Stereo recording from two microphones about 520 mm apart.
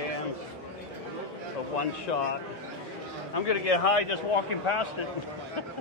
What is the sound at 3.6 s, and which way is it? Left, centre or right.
A man's voice, left.